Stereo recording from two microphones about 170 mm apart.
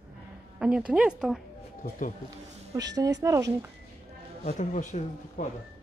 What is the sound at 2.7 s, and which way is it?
Speech, 20° right (ahead or behind).